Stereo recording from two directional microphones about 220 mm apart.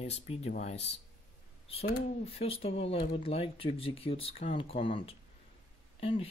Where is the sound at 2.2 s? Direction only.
25° left (ahead or behind).